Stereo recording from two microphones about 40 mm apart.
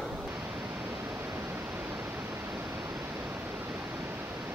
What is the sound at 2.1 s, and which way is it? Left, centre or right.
Pink noise, right.